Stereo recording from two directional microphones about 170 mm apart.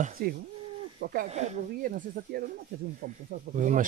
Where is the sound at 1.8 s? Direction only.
60° right (ahead or behind).